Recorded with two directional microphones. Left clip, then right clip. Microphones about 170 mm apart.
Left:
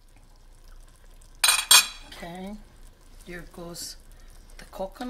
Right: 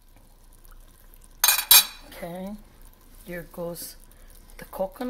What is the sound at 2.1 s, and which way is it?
Cutlery, 25° right (ahead or behind).